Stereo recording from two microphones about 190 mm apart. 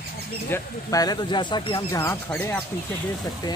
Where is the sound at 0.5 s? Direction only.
20° left (ahead or behind).